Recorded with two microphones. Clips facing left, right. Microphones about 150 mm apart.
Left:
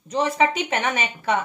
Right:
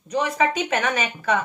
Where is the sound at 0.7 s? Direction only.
20° left (ahead or behind).